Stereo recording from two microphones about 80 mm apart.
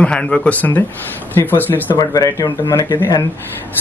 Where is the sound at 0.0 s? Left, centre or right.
Centre.